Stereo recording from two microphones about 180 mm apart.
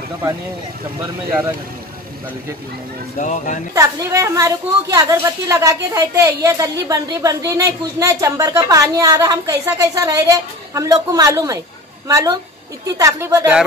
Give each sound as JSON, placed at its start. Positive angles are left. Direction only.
{"t": 3.2, "sound": "speech", "side_deg": 45}
{"t": 3.7, "sound": "a woman's voice", "side_deg": -15}